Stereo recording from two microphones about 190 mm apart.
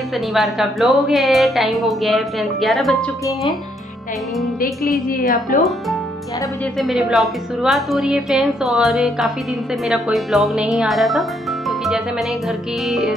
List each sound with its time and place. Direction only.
0.3 s a woman's voice: centre (ahead or behind)
5.5 s speech: 45° left (ahead or behind)
6.8 s a woman's voice: centre (ahead or behind)
12.8 s a woman's voice: centre (ahead or behind)